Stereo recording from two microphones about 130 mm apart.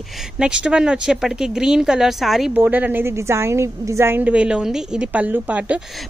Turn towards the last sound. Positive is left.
turn(degrees=-10)  # may be behind; listen again after turning